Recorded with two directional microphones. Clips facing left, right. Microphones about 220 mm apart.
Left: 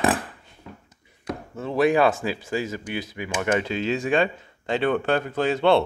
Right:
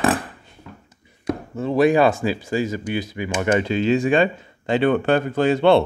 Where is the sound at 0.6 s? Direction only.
20° left (ahead or behind).